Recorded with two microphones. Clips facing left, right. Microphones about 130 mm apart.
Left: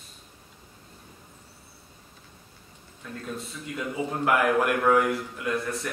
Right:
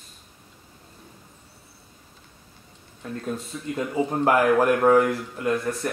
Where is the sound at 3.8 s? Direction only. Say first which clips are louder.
Right 5 dB; 40° right (ahead or behind).